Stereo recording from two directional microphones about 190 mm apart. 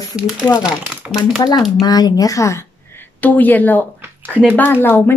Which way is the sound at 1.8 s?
20° left (ahead or behind).